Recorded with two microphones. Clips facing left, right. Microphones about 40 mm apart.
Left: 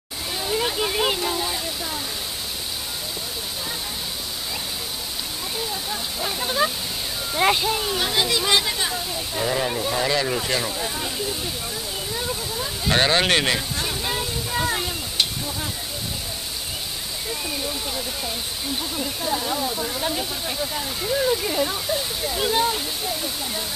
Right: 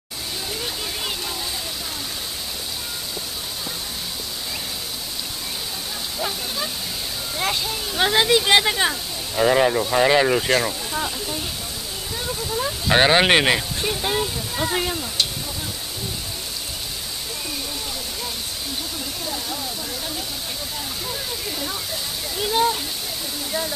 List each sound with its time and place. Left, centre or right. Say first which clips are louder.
0.6 s speech: left 6 dB; left
6.4 s speech: left 5 dB; left
8.0 s speech: right 9 dB; right
12.8 s speech: right 3 dB; centre
18.9 s speech: left 4 dB; centre